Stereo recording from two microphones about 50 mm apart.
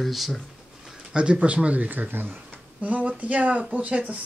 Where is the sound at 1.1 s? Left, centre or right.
Right.